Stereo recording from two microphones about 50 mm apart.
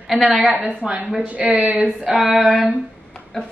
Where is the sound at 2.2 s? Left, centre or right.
Centre.